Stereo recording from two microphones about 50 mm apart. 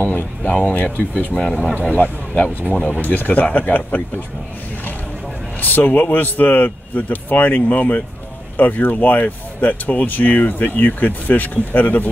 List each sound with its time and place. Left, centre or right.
0.0 s speech: left
0.9 s speech: right
1.3 s speech: left
1.8 s speech: left
5.6 s speech: left